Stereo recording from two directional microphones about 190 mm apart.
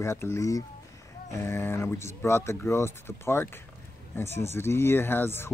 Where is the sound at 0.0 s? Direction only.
15° left (ahead or behind).